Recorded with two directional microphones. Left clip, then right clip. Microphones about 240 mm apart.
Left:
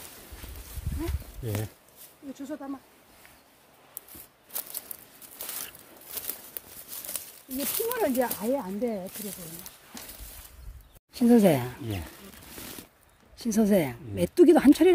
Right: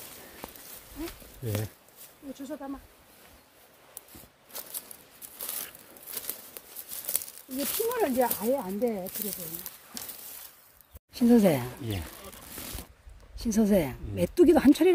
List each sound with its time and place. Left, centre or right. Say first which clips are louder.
2.3 s speech: left 1 dB; centre
5.7 s a sound: left 1 dB; centre
7.5 s speech: right 1 dB; centre
8.0 s speech: even; right
11.1 s a woman's voice: left 2 dB; centre
13.4 s a woman's voice: left 1 dB; centre